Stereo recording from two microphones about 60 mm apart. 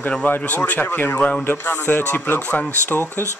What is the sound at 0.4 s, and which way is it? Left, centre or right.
Speech, left.